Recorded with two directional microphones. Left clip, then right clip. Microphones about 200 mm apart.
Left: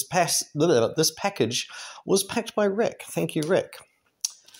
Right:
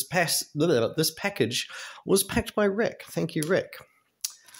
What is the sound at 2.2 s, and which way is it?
Speech, 15° right (ahead or behind).